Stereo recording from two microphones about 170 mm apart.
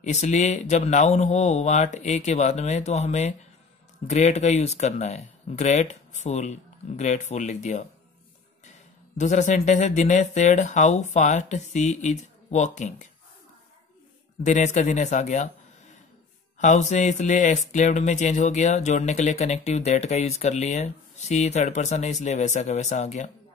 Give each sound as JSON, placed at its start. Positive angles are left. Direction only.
{"t": 0.0, "sound": "speech", "side_deg": 45}
{"t": 9.1, "sound": "speech", "side_deg": 45}
{"t": 14.4, "sound": "speech", "side_deg": 45}
{"t": 16.5, "sound": "speech", "side_deg": 45}